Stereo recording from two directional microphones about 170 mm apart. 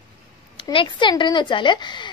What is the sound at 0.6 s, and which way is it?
A woman's voice, 30° left (ahead or behind).